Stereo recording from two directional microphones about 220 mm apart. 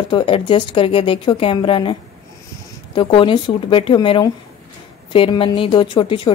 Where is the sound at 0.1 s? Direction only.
20° left (ahead or behind).